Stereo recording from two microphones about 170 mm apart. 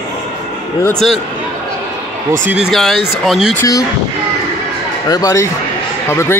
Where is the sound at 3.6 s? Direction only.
20° left (ahead or behind).